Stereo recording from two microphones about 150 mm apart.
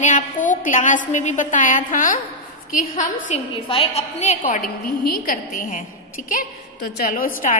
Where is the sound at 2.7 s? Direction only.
50° left (ahead or behind).